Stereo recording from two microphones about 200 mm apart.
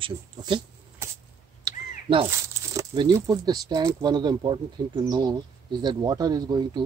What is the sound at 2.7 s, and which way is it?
Speech, 20° right (ahead or behind).